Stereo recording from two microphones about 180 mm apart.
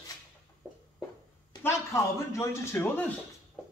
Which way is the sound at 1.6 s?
15° left (ahead or behind).